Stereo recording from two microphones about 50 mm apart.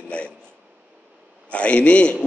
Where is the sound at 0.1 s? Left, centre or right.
Left.